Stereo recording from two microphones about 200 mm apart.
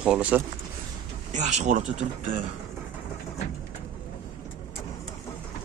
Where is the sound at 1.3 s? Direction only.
35° right (ahead or behind).